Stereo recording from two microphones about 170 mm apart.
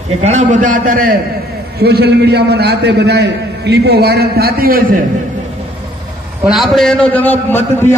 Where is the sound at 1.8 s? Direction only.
70° right (ahead or behind).